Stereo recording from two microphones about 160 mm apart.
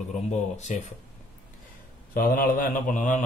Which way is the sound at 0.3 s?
45° left (ahead or behind).